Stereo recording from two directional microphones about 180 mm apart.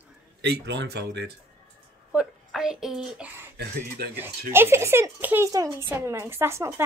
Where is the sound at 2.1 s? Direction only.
5° right (ahead or behind).